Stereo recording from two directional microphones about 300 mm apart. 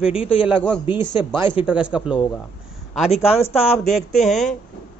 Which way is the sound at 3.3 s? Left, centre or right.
Centre.